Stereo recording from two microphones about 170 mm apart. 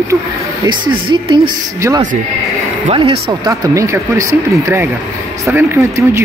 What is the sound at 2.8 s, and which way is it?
Speech, 35° right (ahead or behind).